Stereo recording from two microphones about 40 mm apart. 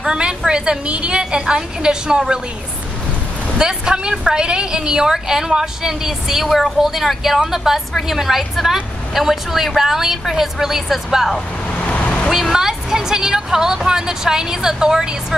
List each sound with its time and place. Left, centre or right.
0.0 s a woman's voice: centre
3.5 s a woman's voice: centre
11.7 s vehicle: left
12.3 s a woman's voice: centre